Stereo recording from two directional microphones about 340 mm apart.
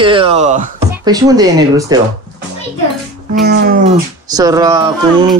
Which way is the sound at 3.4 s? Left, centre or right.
Right.